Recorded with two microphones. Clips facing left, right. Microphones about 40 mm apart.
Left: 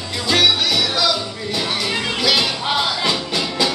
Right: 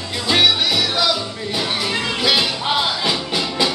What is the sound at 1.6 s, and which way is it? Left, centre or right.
Music, centre.